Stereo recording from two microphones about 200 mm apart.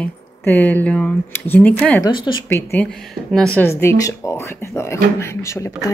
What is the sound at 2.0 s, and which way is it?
Speech, 25° left (ahead or behind).